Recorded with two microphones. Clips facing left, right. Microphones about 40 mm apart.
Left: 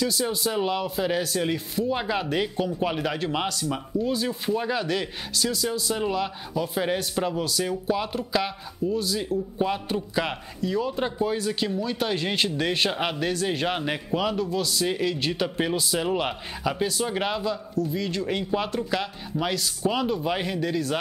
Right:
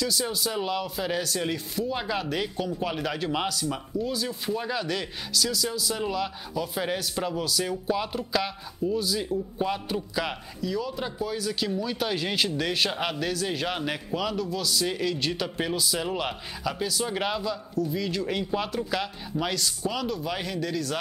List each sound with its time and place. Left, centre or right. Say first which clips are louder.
0.0 s speech: left 3 dB; centre
10.8 s speech: left 5 dB; left
11.7 s speech: left 2 dB; centre
19.8 s speech: left 4 dB; left